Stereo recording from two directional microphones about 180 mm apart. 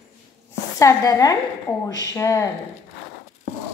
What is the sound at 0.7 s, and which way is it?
A woman's voice, 20° left (ahead or behind).